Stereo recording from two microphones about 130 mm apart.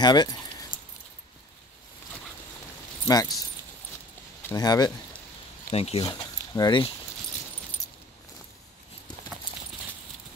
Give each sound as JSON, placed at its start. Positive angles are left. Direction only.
{"t": 0.0, "sound": "keys jangling", "side_deg": 35}
{"t": 3.1, "sound": "speech", "side_deg": 30}
{"t": 4.6, "sound": "speech", "side_deg": 30}
{"t": 5.7, "sound": "speech", "side_deg": 50}
{"t": 6.0, "sound": "speech", "side_deg": 30}